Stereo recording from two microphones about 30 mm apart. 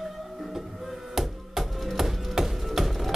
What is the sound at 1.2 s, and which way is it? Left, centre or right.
Music, centre.